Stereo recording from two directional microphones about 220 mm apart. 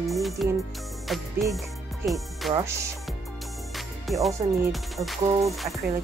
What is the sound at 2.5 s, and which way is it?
Speech, 15° right (ahead or behind).